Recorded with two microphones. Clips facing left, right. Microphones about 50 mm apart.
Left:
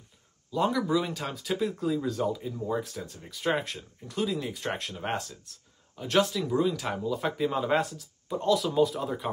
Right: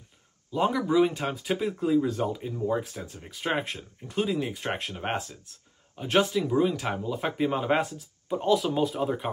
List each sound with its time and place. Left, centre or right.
0.5 s speech: right